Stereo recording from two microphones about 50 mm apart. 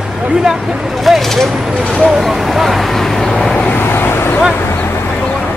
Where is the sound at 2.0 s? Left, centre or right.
Centre.